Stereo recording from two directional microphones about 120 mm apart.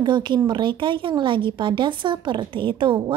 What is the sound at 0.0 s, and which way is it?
Speech, 40° right (ahead or behind).